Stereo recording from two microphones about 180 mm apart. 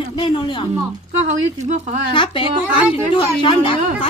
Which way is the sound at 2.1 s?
25° left (ahead or behind).